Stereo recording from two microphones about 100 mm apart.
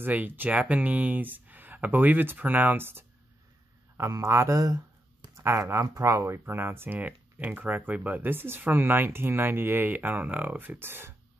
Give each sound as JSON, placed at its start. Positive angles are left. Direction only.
{"t": 0.0, "sound": "speech", "side_deg": -20}